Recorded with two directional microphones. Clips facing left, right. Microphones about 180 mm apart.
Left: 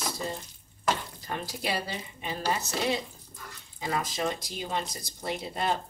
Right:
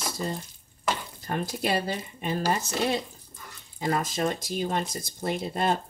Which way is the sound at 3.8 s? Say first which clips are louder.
Right 4 dB; 50° right (ahead or behind).